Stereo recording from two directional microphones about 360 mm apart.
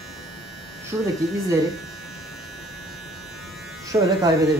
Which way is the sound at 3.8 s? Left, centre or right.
Centre.